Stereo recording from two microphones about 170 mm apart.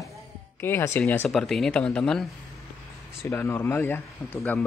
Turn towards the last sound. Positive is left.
turn(degrees=10)  # may be behind; listen again after turning